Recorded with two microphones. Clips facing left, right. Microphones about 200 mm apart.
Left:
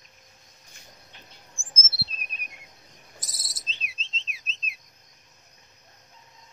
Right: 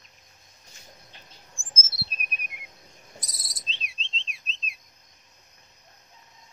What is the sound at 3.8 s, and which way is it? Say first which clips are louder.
Bird: right 1 dB; centre (ahead or behind).